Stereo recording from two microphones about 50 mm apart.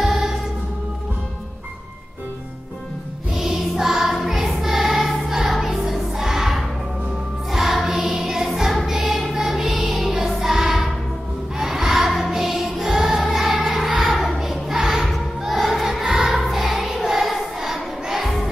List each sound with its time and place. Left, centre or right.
0.0 s music: centre
3.3 s music: centre
14.4 s singing: centre
15.4 s choir: centre